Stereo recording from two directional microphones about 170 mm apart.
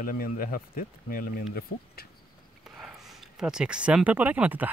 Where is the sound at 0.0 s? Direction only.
60° left (ahead or behind).